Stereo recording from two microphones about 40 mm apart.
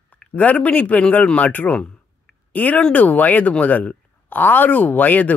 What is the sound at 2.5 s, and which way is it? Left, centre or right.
Speech, left.